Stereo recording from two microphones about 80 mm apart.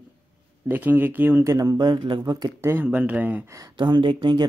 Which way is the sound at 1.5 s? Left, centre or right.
Right.